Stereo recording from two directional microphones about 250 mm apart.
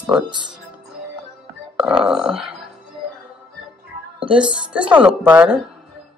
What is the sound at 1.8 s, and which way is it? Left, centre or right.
Speech, centre.